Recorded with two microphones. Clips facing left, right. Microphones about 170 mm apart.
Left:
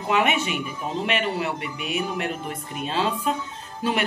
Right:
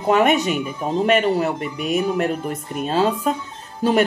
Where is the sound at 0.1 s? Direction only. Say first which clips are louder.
Right 6 dB; 40° right (ahead or behind).